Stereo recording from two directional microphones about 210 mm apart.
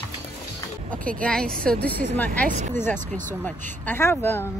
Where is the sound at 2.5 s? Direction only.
35° right (ahead or behind).